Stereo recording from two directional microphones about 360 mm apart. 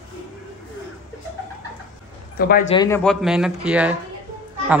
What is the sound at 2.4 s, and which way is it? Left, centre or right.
Speech, left.